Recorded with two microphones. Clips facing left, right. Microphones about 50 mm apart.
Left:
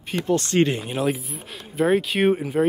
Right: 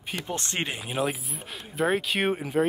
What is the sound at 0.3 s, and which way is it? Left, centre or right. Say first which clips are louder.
Speech: left 13 dB; right.